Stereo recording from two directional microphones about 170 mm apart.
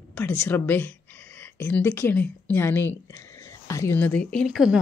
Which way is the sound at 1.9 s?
15° left (ahead or behind).